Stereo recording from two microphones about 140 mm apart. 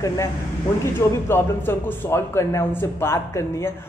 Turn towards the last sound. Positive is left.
turn(degrees=20)  # may be behind; listen again after turning